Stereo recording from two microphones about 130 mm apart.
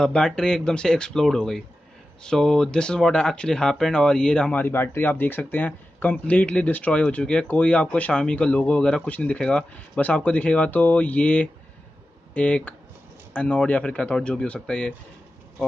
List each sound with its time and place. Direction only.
0.0 s speech: 5° left (ahead or behind)